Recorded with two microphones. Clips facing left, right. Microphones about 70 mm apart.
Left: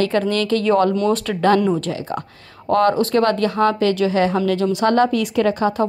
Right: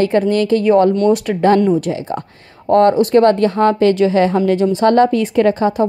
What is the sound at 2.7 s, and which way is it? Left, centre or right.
A woman's voice, right.